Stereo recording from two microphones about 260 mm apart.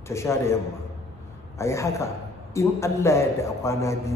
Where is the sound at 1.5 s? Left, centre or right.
Centre.